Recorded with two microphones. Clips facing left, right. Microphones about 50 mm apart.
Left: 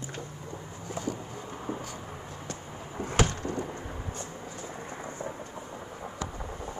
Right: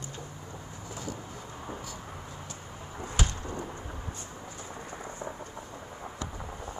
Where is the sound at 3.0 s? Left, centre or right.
Left.